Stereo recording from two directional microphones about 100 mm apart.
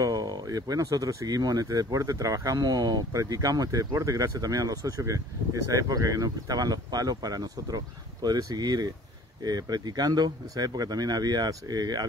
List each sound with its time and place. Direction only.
0.0 s speech: 40° right (ahead or behind)